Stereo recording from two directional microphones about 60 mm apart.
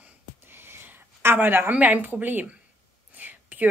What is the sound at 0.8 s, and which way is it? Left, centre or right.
A woman's voice, right.